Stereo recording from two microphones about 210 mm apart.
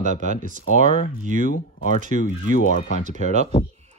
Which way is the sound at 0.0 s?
35° right (ahead or behind).